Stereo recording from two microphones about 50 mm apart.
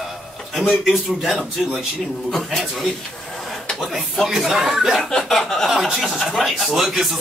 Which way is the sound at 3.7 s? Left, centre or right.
Centre.